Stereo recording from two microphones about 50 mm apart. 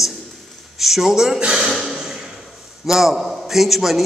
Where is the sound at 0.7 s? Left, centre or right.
Centre.